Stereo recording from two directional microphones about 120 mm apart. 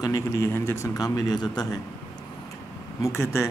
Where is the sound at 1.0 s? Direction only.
35° left (ahead or behind).